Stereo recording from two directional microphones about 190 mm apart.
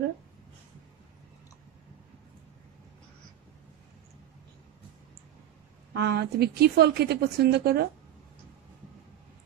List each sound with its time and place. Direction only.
5.9 s a woman's voice: 60° right (ahead or behind)